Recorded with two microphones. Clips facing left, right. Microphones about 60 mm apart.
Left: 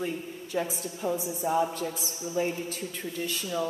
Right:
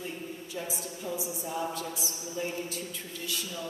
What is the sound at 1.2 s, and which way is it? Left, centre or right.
Speech, left.